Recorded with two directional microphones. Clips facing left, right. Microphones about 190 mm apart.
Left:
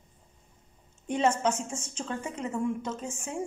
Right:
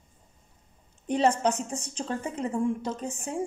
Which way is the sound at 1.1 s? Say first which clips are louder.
Right 2 dB; 35° right (ahead or behind).